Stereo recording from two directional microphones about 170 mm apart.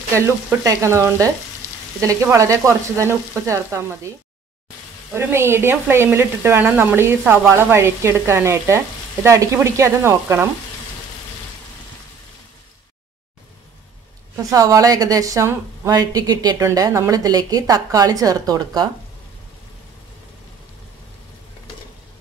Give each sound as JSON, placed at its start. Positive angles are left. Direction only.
{"t": 0.1, "sound": "speech", "side_deg": -15}
{"t": 5.1, "sound": "speech", "side_deg": -15}
{"t": 14.3, "sound": "a woman's voice", "side_deg": -20}